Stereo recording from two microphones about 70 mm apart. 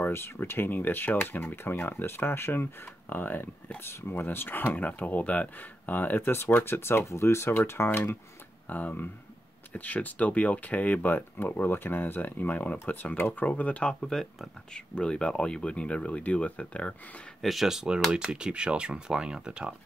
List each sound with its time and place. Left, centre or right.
0.0 s speech: left
8.6 s speech: left
14.1 s speech: centre
15.0 s speech: centre
17.4 s speech: centre